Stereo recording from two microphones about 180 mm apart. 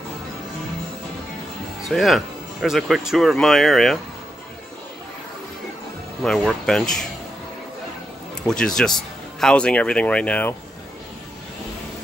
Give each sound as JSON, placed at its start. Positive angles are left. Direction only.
{"t": 1.8, "sound": "speech", "side_deg": 0}
{"t": 6.2, "sound": "speech", "side_deg": 0}
{"t": 8.5, "sound": "speech", "side_deg": 5}